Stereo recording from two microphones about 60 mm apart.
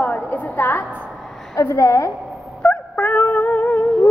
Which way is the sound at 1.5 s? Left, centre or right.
Left.